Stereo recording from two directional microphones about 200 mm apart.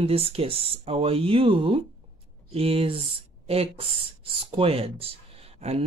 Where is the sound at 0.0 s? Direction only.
30° right (ahead or behind).